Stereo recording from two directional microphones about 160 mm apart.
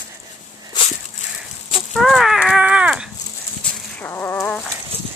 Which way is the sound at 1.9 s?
Centre (ahead or behind).